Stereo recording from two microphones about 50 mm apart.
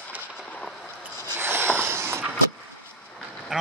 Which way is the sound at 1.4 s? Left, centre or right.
Right.